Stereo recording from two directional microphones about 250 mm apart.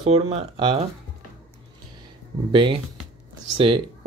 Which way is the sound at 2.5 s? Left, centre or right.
Centre.